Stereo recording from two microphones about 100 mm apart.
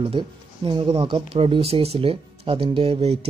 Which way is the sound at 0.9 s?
80° right.